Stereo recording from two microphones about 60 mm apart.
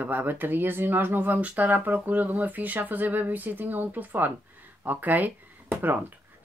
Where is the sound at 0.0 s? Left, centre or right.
Right.